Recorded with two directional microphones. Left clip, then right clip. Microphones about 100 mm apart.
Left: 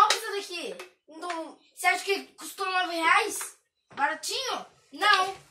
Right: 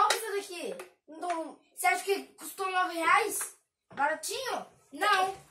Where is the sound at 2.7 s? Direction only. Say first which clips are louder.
Left 2 dB; 15° left (ahead or behind).